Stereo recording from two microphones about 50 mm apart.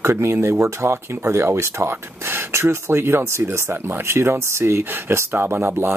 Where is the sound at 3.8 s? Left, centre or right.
Right.